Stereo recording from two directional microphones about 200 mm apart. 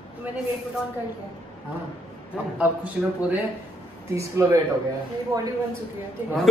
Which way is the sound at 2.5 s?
5° right (ahead or behind).